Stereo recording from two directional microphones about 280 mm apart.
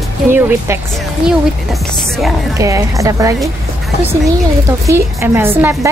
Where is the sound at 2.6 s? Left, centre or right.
Centre.